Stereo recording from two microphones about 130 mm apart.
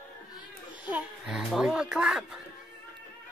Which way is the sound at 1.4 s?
5° right (ahead or behind).